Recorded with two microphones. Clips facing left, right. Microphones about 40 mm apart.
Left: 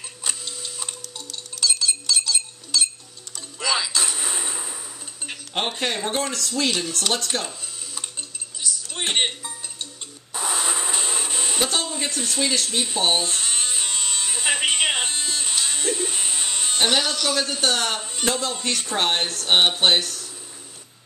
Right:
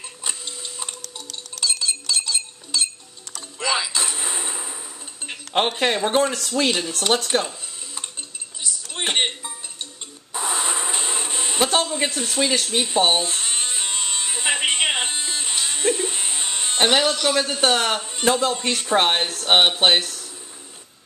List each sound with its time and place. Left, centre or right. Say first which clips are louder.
0.2 s tick-tock: even; centre
1.6 s chink: left 1 dB; centre
3.6 s a sound: right 1 dB; centre
5.8 s speech: right 7 dB; right
6.7 s speech: right 3 dB; centre
8.6 s music: right 1 dB; centre
10.3 s a sound: right 1 dB; centre
12.1 s speech: right 3 dB; centre
12.9 s electric shaver: right 3 dB; centre
17.6 s speech: right 3 dB; right